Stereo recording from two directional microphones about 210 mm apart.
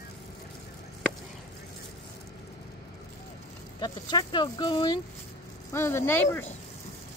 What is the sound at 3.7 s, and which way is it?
Speech, 20° left (ahead or behind).